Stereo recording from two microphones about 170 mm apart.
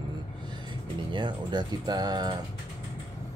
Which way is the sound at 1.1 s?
25° right (ahead or behind).